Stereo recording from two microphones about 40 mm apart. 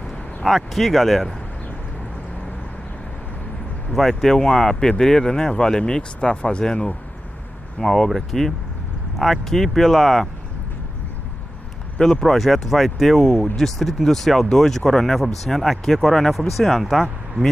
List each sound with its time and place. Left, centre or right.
0.4 s speech: centre
3.9 s speech: centre; by 6.9 s left
7.8 s speech: centre
12.2 s speech: centre